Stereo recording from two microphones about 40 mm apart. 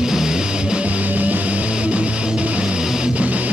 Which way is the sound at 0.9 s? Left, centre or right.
Right.